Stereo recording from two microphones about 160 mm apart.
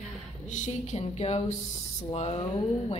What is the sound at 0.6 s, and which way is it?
Speech, 40° left (ahead or behind).